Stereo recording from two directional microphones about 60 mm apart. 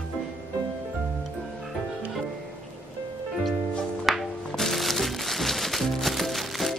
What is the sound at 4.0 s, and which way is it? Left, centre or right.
Music, centre.